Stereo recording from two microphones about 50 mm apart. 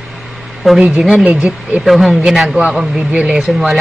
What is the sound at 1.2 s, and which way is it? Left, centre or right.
Speech, right.